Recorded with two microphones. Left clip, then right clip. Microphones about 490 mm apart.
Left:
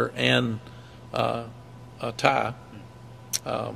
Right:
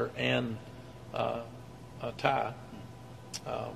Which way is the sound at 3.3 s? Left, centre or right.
Left.